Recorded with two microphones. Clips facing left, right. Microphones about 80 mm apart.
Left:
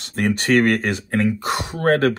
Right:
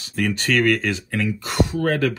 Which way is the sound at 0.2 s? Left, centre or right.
Left.